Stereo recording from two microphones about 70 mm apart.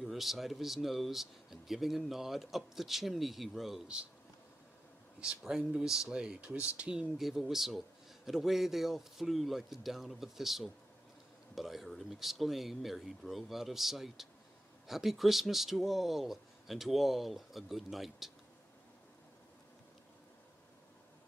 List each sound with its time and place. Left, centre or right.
0.0 s speech: centre
3.8 s speech: centre
5.2 s speech: centre
7.2 s speech: centre